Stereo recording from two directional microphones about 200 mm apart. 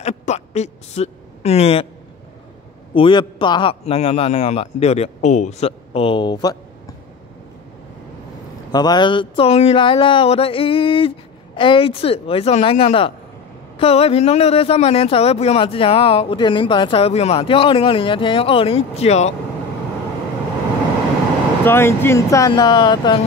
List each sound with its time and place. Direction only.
0.0 s a woman's voice: 35° left (ahead or behind)
2.9 s speech: 25° left (ahead or behind)
8.7 s speech: 20° left (ahead or behind)
21.6 s speech: 10° left (ahead or behind)